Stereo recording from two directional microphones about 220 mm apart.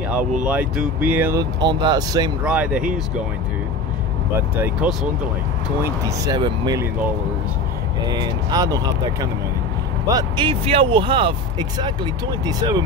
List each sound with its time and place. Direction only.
0.2 s speech: 35° right (ahead or behind)
0.5 s speech: 5° right (ahead or behind)
2.4 s speech: 5° right (ahead or behind)
4.8 s speech: 5° right (ahead or behind)
6.0 s speech: 15° right (ahead or behind)
8.1 s speech: 20° right (ahead or behind)